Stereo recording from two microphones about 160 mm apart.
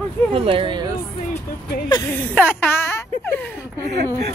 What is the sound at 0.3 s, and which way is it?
Speech, 35° right (ahead or behind).